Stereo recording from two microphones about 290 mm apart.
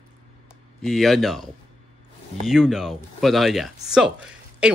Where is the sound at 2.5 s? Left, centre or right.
Centre.